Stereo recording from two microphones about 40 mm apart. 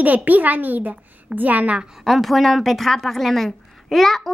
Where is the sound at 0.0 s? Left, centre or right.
Right.